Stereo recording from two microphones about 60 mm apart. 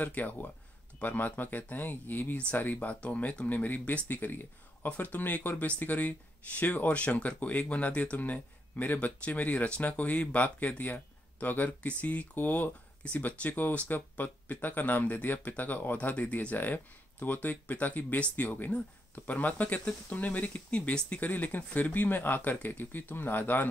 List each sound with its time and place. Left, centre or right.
0.0 s speech: left